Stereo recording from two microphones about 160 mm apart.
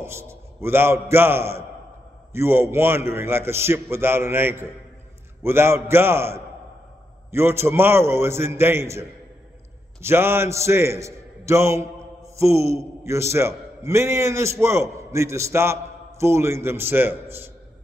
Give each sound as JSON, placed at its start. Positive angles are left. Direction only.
{"t": 0.0, "sound": "a man's voice", "side_deg": -15}
{"t": 10.0, "sound": "a man's voice", "side_deg": -15}